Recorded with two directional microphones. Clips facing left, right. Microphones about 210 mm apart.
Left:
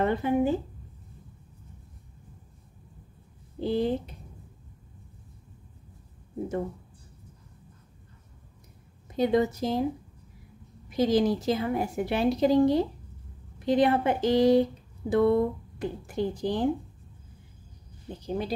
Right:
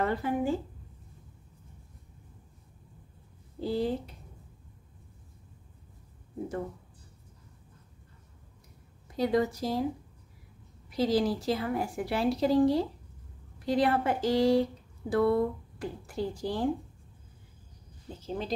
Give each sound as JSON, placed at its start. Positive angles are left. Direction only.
{"t": 0.0, "sound": "speech", "side_deg": 20}
{"t": 3.5, "sound": "a woman's voice", "side_deg": 20}
{"t": 9.1, "sound": "a woman's voice", "side_deg": 20}
{"t": 10.9, "sound": "a woman's voice", "side_deg": 20}
{"t": 18.0, "sound": "speech", "side_deg": 15}